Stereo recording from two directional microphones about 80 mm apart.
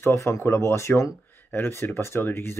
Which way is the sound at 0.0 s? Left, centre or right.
Left.